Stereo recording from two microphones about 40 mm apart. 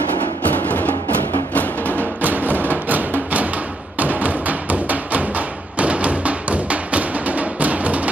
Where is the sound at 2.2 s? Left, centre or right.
Right.